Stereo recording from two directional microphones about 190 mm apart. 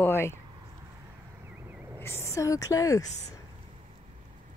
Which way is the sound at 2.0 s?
15° left (ahead or behind).